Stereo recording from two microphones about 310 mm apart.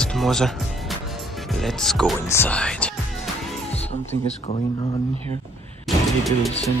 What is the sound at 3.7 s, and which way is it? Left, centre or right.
Speech, left.